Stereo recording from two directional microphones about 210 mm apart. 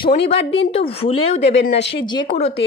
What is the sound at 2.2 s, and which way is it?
Speech, 30° left (ahead or behind).